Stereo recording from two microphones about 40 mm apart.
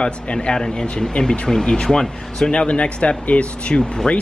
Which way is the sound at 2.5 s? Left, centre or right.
Left.